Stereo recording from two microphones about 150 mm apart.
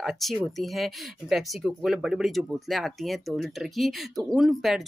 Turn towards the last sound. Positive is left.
turn(degrees=0)  # may be behind; listen again after turning